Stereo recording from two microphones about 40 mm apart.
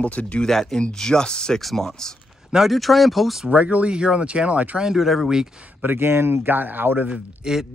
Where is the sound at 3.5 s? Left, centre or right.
Right.